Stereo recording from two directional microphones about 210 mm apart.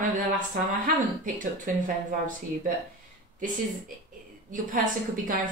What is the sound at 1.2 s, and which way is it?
Speech, 40° right (ahead or behind).